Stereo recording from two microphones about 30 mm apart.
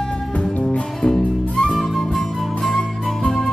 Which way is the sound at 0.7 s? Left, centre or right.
Left.